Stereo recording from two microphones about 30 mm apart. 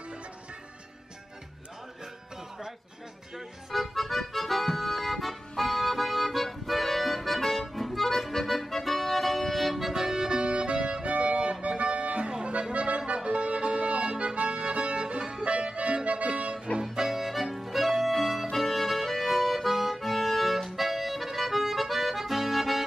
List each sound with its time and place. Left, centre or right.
3.3 s accordion: centre
10.1 s accordion: right
11.1 s music: right
12.7 s accordion: right
14.6 s music: right
16.9 s accordion: centre
17.5 s music: centre